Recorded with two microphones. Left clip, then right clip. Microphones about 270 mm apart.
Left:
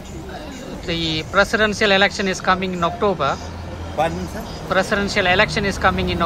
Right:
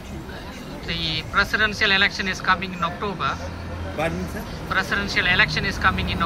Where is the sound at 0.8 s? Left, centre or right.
Centre.